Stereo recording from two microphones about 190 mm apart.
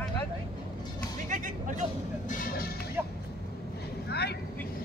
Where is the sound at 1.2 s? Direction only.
40° right (ahead or behind).